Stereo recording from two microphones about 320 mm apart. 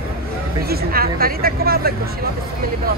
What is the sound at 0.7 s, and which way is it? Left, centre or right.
Speech, right.